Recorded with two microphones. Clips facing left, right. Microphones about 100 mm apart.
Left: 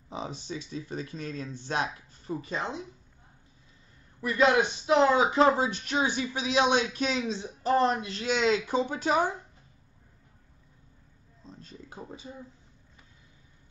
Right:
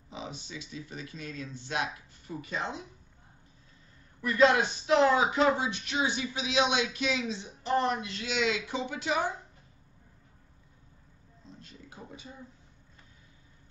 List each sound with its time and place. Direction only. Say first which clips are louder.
0.1 s speech: left 5 dB; 40° left (ahead or behind)
4.2 s speech: even; 20° left (ahead or behind); by 9.2 s 40° left (ahead or behind)
11.6 s a sound: left 5 dB; 35° left (ahead or behind)